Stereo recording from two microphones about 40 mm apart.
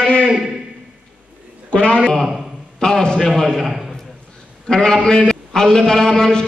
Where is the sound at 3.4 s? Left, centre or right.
Centre.